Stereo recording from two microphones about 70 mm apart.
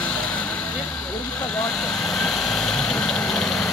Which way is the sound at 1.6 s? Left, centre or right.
Centre.